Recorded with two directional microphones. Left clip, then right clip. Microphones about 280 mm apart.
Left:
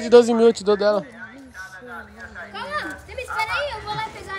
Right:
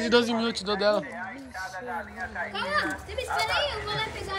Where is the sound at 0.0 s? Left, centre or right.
Centre.